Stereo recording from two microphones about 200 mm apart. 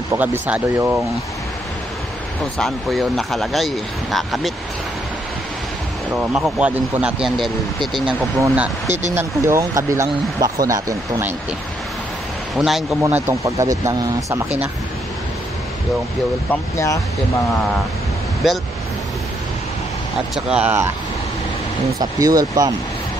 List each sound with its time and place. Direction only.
0.2 s speech: 10° right (ahead or behind)
2.6 s speech: centre (ahead or behind)
6.1 s speech: 5° right (ahead or behind)
8.8 s speech: 35° right (ahead or behind)
9.1 s speech: 15° right (ahead or behind)
12.5 s speech: centre (ahead or behind)
13.0 s speech: 15° right (ahead or behind)
16.7 s speech: 15° left (ahead or behind)
18.4 s speech: centre (ahead or behind)
20.3 s speech: 5° right (ahead or behind)
22.2 s speech: 20° right (ahead or behind)